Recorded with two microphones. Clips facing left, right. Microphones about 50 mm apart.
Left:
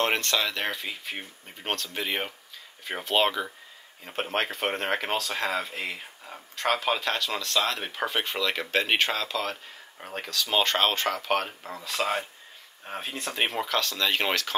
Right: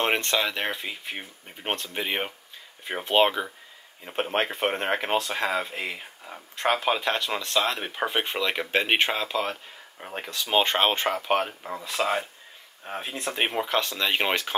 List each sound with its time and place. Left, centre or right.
0.0 s speech: centre
6.5 s speech: right
9.9 s speech: centre
10.2 s speech: right; by 13.2 s centre
13.5 s speech: right